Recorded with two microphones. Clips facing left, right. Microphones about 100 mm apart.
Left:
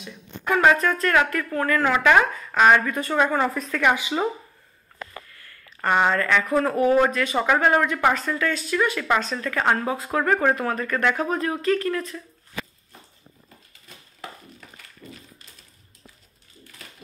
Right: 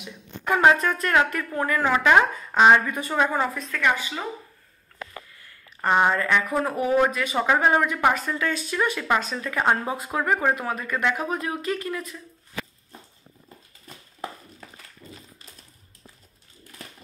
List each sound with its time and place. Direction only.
0.5 s speech: 20° right (ahead or behind)
3.5 s speech: 10° left (ahead or behind)
5.8 s speech: 15° right (ahead or behind)
15.0 s a sound: 5° left (ahead or behind)